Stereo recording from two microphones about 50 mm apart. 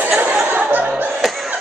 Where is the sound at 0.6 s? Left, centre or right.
Right.